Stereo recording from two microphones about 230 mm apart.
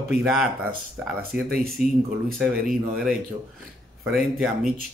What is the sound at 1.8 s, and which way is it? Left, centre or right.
Speech, left.